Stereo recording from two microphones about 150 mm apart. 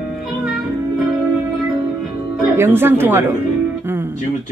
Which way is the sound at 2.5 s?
15° right (ahead or behind).